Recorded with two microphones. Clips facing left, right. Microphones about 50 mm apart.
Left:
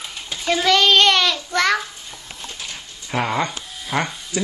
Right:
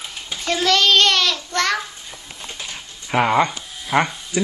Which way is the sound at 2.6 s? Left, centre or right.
Centre.